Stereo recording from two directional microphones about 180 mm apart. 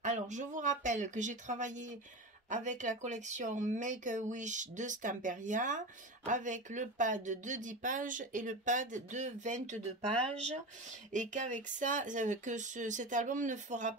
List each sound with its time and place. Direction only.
0.0 s speech: 40° right (ahead or behind)
11.1 s speech: 45° right (ahead or behind)